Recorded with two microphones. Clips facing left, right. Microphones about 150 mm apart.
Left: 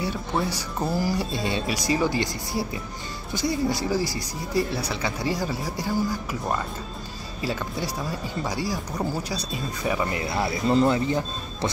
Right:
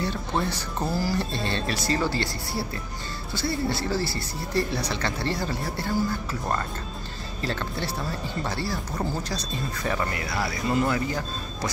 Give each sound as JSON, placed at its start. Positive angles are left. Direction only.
{"t": 0.0, "sound": "speech", "side_deg": 10}
{"t": 10.1, "sound": "speech", "side_deg": 25}